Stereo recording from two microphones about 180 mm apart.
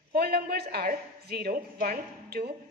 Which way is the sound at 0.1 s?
60° right (ahead or behind).